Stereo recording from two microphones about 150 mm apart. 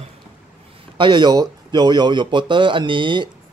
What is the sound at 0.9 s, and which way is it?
Speech, 30° right (ahead or behind).